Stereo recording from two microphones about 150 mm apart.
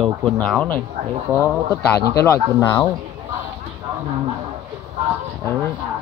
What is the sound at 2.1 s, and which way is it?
Speech, 20° left (ahead or behind).